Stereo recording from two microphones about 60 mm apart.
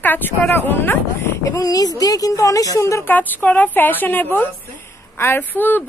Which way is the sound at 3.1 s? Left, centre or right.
Left.